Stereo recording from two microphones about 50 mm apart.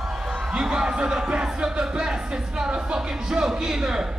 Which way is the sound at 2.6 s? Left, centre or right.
Centre.